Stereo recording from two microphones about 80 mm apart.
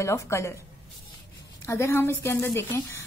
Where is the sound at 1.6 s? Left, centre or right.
Left.